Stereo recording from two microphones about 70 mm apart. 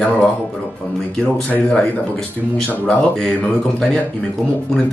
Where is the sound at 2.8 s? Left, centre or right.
Centre.